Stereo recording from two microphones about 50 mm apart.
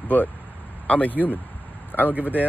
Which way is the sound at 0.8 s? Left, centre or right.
Left.